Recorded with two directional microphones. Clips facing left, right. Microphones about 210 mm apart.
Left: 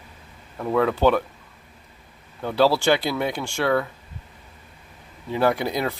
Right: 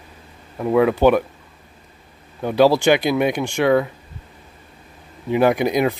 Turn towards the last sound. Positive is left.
turn(degrees=-15)  # may be behind; listen again after turning